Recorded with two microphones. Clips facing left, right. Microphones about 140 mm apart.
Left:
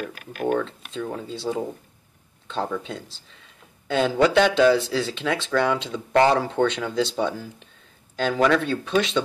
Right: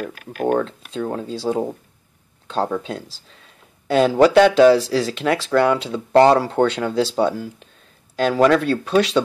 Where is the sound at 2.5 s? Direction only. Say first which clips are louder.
Right 5 dB; 45° right (ahead or behind).